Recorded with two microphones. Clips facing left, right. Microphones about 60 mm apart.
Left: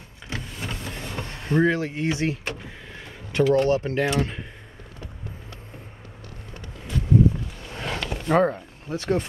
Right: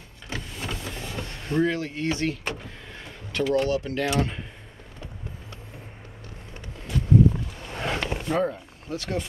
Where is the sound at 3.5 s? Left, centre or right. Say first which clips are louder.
Left 3 dB; left.